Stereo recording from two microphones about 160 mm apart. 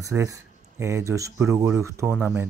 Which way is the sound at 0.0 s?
20° right (ahead or behind).